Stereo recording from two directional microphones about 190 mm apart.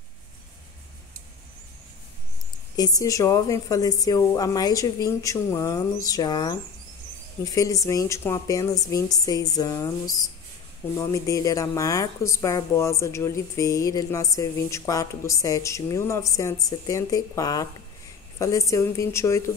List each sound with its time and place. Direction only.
2.7 s a woman's voice: 20° left (ahead or behind)